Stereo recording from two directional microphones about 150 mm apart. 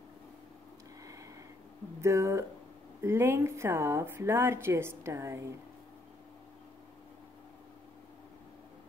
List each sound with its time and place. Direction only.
2.0 s a woman's voice: 20° right (ahead or behind)